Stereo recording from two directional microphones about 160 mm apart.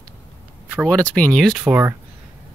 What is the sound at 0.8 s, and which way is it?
Speech, 5° left (ahead or behind).